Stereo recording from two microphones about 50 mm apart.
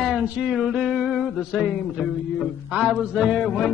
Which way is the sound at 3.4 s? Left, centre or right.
Centre.